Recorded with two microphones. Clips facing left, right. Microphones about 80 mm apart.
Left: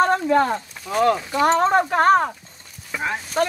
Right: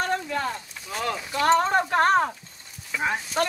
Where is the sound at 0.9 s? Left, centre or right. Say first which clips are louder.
Left 11 dB; left.